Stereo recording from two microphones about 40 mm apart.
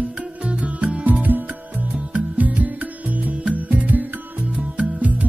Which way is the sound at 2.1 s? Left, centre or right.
Right.